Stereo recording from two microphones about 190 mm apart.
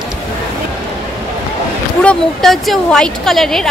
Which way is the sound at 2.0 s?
Centre (ahead or behind).